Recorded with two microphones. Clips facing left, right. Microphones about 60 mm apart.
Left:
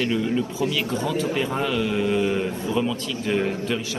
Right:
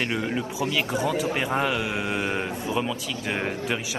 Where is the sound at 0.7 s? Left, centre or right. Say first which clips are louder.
Even; centre.